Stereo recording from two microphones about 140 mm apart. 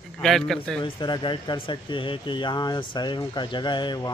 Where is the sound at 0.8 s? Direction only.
35° left (ahead or behind).